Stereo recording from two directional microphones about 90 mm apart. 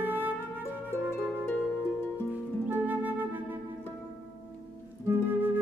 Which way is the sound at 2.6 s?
20° right (ahead or behind).